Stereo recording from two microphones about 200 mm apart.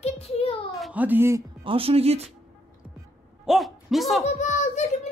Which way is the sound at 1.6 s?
30° right (ahead or behind).